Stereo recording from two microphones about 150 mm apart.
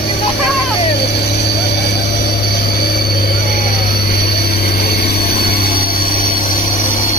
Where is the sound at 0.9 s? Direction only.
90° left.